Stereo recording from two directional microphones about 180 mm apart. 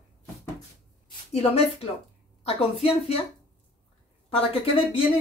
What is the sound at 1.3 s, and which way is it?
Speech, 35° left (ahead or behind).